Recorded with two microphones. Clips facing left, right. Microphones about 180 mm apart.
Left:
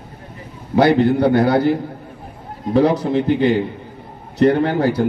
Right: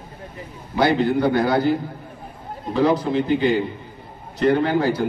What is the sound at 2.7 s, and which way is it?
A man's voice, 65° left (ahead or behind).